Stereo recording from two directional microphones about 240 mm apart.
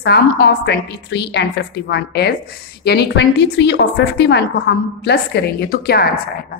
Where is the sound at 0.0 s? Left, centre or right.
Left.